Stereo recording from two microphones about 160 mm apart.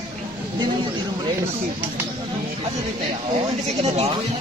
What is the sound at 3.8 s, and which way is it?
Speech, 40° right (ahead or behind).